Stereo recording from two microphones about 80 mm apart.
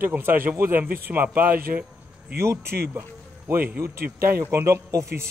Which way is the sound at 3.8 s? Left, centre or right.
Right.